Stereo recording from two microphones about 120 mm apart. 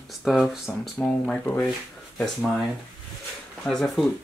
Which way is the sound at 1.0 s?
10° left (ahead or behind).